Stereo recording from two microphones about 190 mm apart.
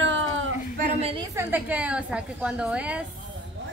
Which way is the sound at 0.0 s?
75° right (ahead or behind).